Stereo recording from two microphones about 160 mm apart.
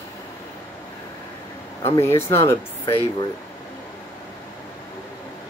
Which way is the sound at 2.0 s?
15° left (ahead or behind).